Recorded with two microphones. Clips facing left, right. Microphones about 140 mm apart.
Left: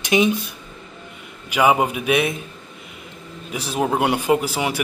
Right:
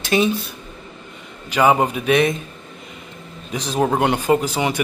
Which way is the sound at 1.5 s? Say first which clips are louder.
Right 1 dB; 10° left (ahead or behind).